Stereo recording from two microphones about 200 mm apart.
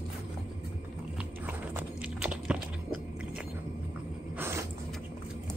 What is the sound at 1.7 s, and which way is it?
Biting, 5° right (ahead or behind).